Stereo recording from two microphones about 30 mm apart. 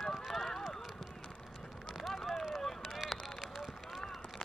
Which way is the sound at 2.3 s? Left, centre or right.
Centre.